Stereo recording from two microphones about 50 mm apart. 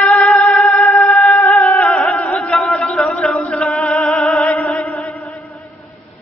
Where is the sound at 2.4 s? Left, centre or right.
Left.